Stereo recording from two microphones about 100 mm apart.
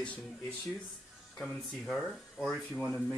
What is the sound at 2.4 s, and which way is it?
Speech, 15° left (ahead or behind).